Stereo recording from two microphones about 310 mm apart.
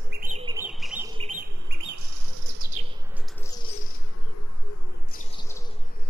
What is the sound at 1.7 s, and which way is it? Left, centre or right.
Bird, right.